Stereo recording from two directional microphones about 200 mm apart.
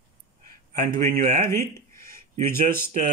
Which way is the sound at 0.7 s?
45° right (ahead or behind).